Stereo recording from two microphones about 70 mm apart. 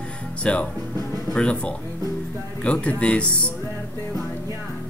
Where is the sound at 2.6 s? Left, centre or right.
Centre.